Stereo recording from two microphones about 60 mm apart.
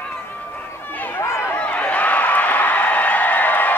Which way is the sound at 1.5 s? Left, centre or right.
Centre.